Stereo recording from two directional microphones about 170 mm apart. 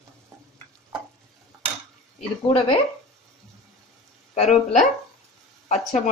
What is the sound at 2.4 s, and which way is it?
Speech, 35° left (ahead or behind).